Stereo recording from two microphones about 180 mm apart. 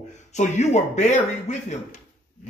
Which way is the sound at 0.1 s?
40° left (ahead or behind).